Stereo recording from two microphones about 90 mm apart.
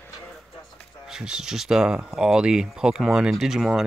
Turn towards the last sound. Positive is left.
turn(degrees=-5)  # may be behind; listen again after turning